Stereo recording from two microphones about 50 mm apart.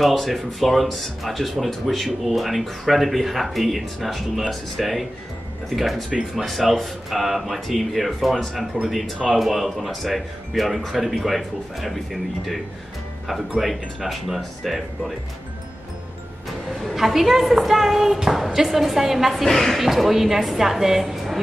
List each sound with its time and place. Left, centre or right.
0.0 s speech: centre
13.6 s speech: centre
16.8 s speech: centre
19.4 s speech: centre
19.8 s speech: centre